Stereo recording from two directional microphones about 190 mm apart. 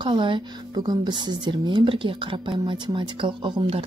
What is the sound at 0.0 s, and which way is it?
Speech, 25° right (ahead or behind).